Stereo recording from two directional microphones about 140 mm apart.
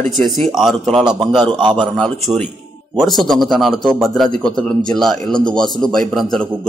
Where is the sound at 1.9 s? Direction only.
5° left (ahead or behind).